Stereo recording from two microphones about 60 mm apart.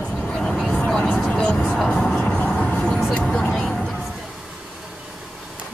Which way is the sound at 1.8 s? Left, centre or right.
Centre.